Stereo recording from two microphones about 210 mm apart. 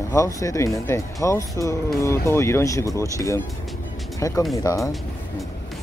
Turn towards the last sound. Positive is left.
turn(degrees=15)  # may be behind; listen again after turning